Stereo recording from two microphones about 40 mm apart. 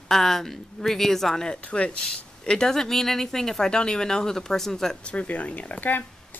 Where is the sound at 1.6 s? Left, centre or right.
Left.